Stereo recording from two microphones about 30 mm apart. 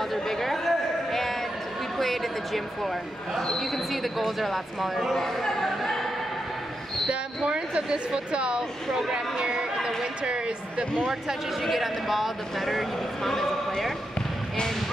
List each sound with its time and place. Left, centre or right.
0.1 s a sound: centre
2.0 s speech: centre
5.1 s speech: centre
5.7 s music: centre
7.1 s speech: right
9.1 s a sound: right
10.2 s speech: right
11.6 s speech: centre